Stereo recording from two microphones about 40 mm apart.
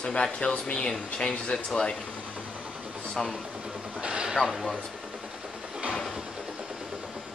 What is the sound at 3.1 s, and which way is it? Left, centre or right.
Speech, left.